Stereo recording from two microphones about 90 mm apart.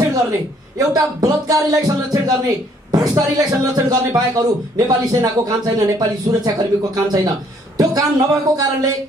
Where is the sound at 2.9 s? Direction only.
45° right (ahead or behind).